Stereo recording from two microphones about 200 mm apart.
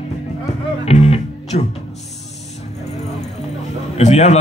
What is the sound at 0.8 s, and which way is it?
Music, 30° left (ahead or behind).